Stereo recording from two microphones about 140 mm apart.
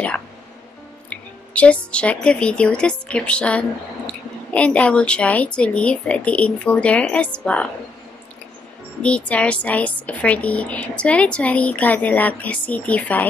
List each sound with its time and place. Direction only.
1.1 s a woman's voice: 10° left (ahead or behind)
9.0 s a woman's voice: 10° left (ahead or behind)